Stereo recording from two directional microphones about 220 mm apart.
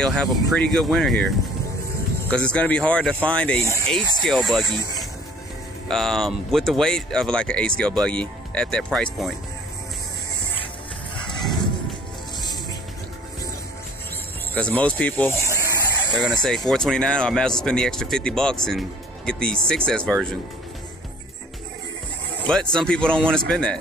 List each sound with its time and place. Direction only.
0.0 s speech: 5° left (ahead or behind)
2.3 s speech: 5° left (ahead or behind)
14.5 s speech: 5° left (ahead or behind)
15.4 s a sound: 15° right (ahead or behind)
16.4 s speech: centre (ahead or behind)
22.5 s speech: 5° left (ahead or behind)